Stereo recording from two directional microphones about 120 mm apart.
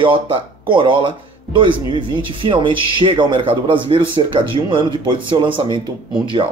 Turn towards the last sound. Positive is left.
turn(degrees=-45)  # may be behind; listen again after turning